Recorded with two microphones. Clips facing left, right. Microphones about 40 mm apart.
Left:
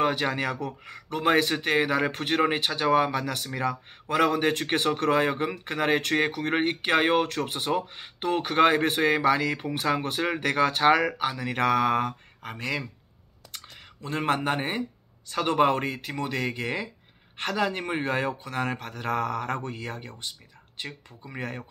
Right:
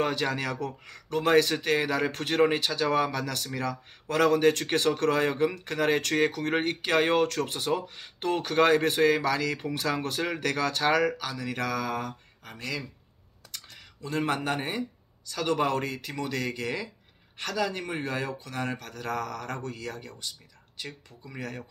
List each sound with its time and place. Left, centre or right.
0.0 s speech: centre; by 12.5 s left
12.5 s speech: left
14.0 s speech: left